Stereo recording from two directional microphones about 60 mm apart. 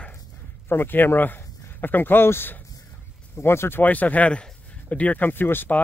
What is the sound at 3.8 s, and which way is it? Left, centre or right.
Speech, left.